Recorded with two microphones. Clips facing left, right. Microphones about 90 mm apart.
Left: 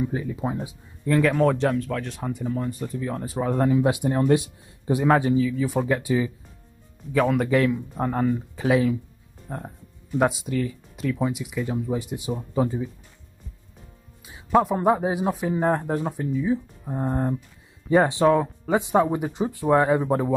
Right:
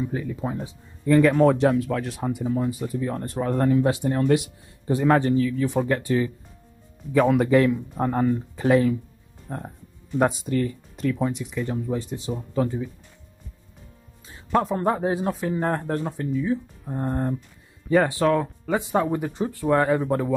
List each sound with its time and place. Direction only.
0.0 s speech: 15° left (ahead or behind)
1.0 s speech: centre (ahead or behind)
7.2 s speech: centre (ahead or behind); by 12.8 s 15° left (ahead or behind)
14.2 s speech: 10° left (ahead or behind)
17.8 s speech: 20° left (ahead or behind)